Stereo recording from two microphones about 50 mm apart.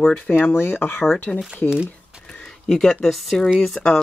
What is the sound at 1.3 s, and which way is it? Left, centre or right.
Speech, left.